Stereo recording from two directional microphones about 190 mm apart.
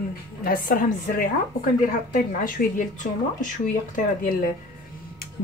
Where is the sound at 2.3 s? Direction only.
45° left (ahead or behind).